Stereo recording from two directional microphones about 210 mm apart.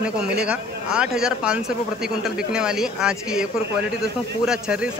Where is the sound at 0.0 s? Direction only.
5° right (ahead or behind).